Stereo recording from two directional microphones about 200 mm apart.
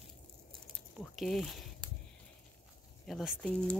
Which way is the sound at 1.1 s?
Centre (ahead or behind).